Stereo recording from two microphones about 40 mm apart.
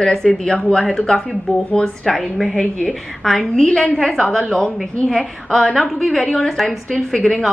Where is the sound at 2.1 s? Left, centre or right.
Centre.